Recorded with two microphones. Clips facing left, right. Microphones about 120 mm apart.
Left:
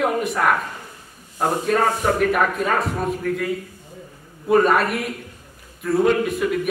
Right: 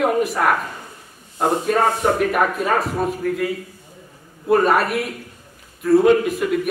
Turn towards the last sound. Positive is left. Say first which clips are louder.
# right 3 dB
turn(degrees=0)  # may be behind; listen again after turning